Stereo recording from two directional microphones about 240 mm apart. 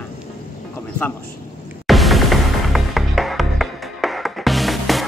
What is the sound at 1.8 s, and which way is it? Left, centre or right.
Music, centre.